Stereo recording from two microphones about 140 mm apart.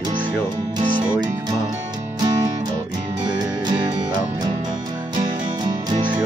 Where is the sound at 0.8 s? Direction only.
35° right (ahead or behind).